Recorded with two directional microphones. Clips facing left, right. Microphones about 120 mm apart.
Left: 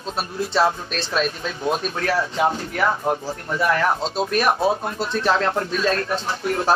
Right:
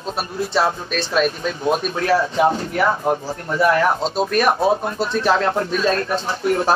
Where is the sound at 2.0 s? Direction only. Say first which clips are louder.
Right 5 dB; 25° right (ahead or behind).